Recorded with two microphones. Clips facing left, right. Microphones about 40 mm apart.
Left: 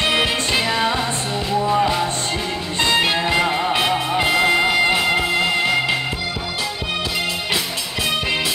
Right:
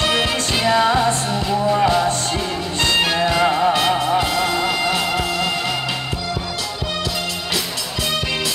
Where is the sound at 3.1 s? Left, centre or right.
Left.